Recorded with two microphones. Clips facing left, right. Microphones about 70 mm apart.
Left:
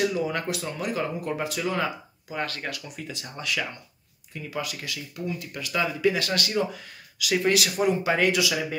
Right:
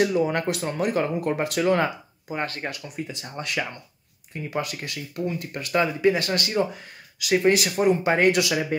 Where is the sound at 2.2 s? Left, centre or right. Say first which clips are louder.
Right 2 dB; right.